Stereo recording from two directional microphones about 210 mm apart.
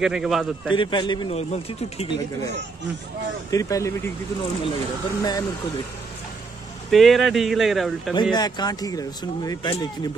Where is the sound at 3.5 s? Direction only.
15° left (ahead or behind).